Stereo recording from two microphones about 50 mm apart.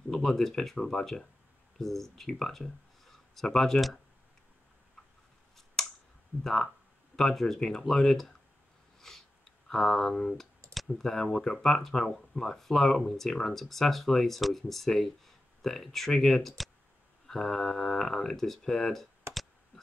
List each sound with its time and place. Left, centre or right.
0.1 s speech: centre
6.4 s speech: centre
9.0 s a sound: centre
11.0 s speech: centre
19.3 s clicking: right